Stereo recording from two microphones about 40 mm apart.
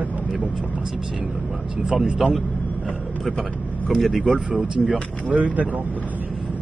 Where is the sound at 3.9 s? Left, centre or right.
Centre.